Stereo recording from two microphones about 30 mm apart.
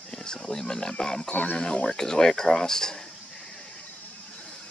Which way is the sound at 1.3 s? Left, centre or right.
Left.